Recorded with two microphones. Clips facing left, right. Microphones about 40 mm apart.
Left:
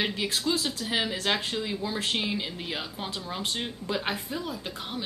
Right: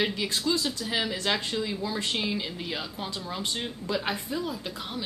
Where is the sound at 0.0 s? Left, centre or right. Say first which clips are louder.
Right 1 dB; centre.